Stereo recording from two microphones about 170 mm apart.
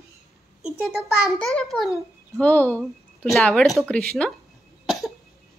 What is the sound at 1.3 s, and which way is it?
A child's voice, 5° left (ahead or behind).